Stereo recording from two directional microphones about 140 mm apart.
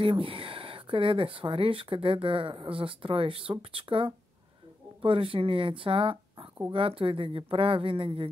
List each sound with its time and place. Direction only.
0.0 s speech: 40° right (ahead or behind)